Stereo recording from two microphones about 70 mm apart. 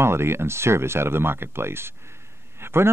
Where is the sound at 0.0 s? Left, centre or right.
Right.